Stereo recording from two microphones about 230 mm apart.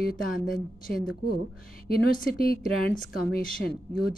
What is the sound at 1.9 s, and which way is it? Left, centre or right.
A woman's voice, left.